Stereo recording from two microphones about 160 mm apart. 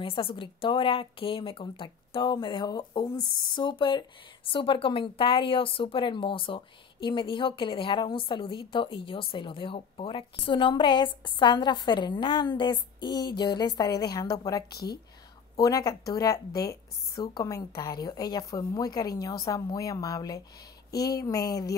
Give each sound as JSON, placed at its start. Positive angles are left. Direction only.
{"t": 0.0, "sound": "a woman's voice", "side_deg": 35}
{"t": 14.7, "sound": "speech", "side_deg": 80}
{"t": 15.5, "sound": "a woman's voice", "side_deg": 20}